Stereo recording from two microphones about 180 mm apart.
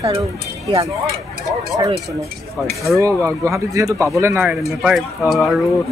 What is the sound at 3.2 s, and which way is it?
Speech, 15° right (ahead or behind).